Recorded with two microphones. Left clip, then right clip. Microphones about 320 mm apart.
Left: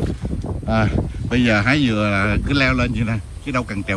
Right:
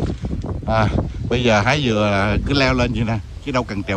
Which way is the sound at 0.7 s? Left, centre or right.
Centre.